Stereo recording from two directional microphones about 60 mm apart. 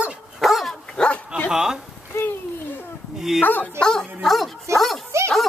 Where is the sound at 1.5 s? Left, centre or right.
Centre.